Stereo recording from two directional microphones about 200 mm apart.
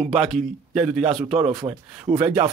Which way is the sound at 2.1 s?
10° right (ahead or behind).